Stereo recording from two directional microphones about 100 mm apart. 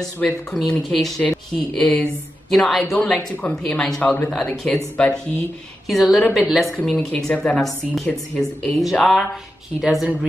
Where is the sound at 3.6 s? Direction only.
5° left (ahead or behind).